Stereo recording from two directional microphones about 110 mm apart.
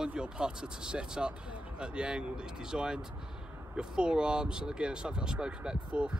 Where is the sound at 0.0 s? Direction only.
5° right (ahead or behind).